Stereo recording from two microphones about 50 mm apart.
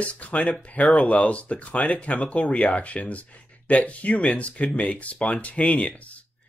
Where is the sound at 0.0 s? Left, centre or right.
Left.